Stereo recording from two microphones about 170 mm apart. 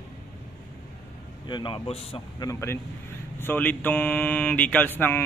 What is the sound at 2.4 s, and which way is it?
Speech, 20° left (ahead or behind).